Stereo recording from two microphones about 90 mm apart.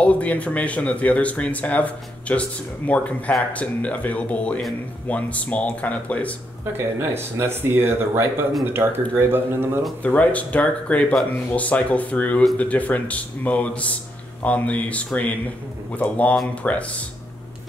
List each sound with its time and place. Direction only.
0.0 s speech: 15° left (ahead or behind)
6.6 s speech: 25° right (ahead or behind)
10.0 s speech: 15° left (ahead or behind)